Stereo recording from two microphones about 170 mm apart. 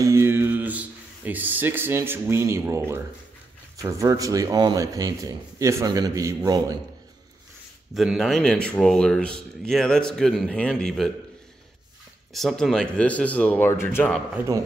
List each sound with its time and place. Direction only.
0.0 s a sound: 15° right (ahead or behind)
3.7 s speech: 20° right (ahead or behind)
7.9 s speech: centre (ahead or behind)
12.3 s speech: centre (ahead or behind)